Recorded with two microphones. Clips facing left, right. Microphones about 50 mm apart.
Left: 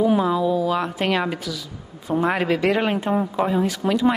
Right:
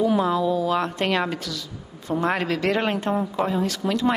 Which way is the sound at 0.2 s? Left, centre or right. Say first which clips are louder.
Left 1 dB; centre.